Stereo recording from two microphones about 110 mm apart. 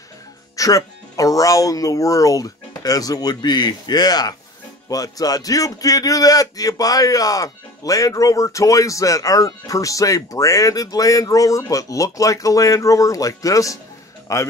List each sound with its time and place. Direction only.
0.6 s a man's voice: 30° left (ahead or behind)